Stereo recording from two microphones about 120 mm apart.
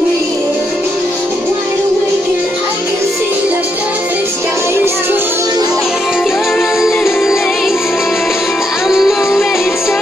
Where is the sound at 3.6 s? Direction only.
15° right (ahead or behind).